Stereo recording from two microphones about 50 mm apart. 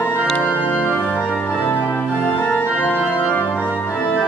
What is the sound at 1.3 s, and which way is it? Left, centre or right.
Music, left.